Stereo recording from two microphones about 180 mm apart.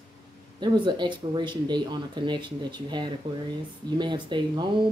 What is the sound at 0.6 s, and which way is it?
Speech, 25° right (ahead or behind).